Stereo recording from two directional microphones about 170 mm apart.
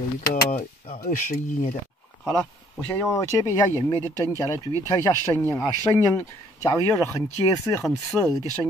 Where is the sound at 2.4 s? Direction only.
5° left (ahead or behind).